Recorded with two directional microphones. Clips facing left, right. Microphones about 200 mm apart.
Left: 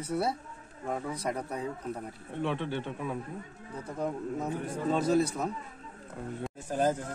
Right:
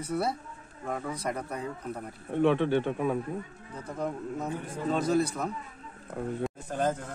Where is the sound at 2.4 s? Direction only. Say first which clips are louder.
Right 8 dB; 60° right (ahead or behind).